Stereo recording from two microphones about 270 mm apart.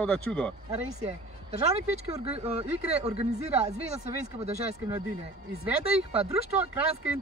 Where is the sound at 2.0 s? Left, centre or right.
Right.